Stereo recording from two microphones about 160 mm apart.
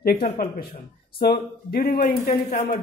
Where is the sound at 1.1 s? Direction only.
80° left.